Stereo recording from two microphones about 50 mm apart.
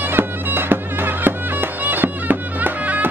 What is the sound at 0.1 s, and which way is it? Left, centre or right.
Music, right.